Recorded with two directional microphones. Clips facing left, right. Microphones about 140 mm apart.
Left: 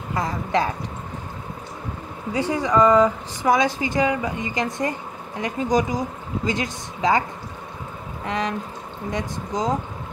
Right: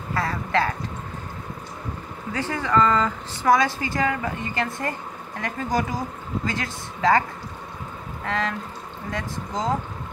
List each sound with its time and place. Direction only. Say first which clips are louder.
0.1 s speech: left 1 dB; 15° left (ahead or behind)
2.3 s speech: left 3 dB; 15° left (ahead or behind)
8.3 s speech: left 1 dB; 15° left (ahead or behind)